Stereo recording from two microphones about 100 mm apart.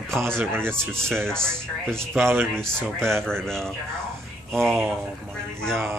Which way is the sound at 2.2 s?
25° right (ahead or behind).